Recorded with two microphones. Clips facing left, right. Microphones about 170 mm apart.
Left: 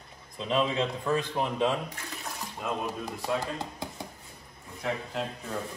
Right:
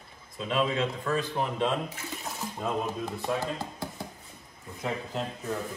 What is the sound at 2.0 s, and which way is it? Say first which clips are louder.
Speech: right 2 dB; 5° right (ahead or behind).